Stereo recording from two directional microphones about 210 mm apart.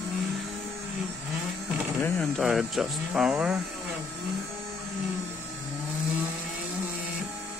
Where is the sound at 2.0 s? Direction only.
5° left (ahead or behind).